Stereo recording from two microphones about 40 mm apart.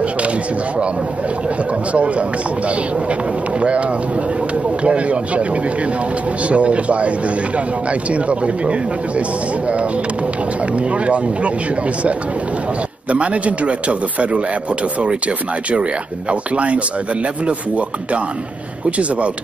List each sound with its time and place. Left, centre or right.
1.9 s a man's voice: right
4.8 s a man's voice: right
10.8 s a man's voice: right
13.1 s a man's voice: right